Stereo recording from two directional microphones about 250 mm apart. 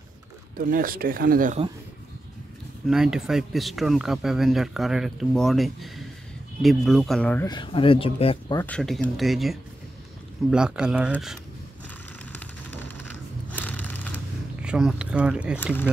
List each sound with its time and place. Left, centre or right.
0.6 s speech: right
2.9 s speech: centre
7.4 s speech: centre
8.6 s speech: centre
12.3 s a sound: centre